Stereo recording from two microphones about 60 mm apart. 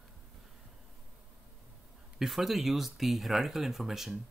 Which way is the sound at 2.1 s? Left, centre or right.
Centre.